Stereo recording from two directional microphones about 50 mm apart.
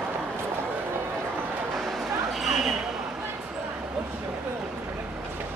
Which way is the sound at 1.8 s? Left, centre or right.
Centre.